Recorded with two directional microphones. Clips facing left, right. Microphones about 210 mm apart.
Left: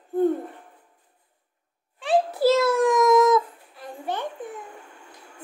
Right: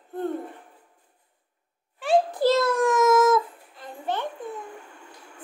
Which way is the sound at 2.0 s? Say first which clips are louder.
Left 1 dB; 5° left (ahead or behind).